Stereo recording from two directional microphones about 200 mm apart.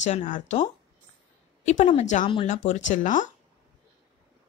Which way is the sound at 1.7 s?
35° left (ahead or behind).